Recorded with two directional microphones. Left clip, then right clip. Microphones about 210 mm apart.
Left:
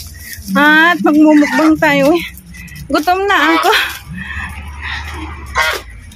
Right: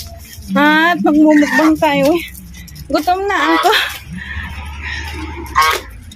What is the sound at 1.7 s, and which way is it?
Speech, 15° left (ahead or behind).